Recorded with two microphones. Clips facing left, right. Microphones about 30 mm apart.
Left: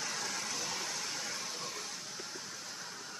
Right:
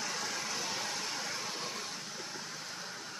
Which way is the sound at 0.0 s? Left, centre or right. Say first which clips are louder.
Right 1 dB; centre.